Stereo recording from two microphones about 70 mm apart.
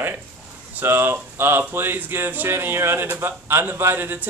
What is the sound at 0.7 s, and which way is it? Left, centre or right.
Speech, right.